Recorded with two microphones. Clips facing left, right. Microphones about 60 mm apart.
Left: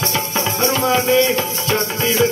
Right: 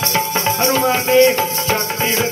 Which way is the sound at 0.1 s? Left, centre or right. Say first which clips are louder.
Right 3 dB; right.